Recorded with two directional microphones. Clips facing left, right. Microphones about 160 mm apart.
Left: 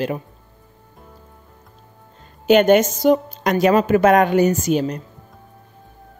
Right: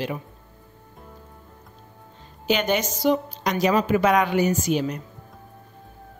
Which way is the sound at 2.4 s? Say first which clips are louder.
Left 10 dB; 50° left (ahead or behind).